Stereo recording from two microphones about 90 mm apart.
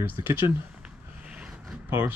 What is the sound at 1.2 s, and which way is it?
Vehicle, 10° right (ahead or behind).